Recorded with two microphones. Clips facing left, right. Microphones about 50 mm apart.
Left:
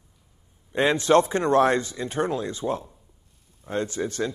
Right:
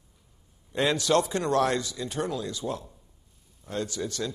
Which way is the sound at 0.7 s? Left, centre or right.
Left.